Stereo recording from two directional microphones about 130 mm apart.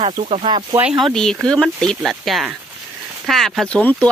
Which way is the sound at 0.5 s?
35° right (ahead or behind).